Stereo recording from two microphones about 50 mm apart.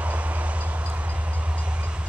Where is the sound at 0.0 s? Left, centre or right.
Right.